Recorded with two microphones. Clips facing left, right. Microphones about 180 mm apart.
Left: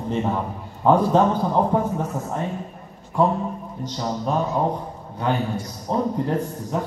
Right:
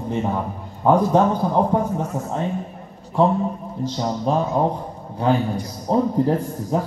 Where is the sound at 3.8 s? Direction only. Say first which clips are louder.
Right 3 dB; 30° right (ahead or behind).